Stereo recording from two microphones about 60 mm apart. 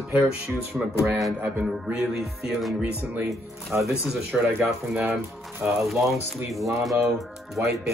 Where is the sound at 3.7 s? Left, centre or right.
Right.